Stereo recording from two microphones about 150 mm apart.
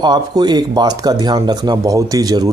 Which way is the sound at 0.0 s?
30° right (ahead or behind).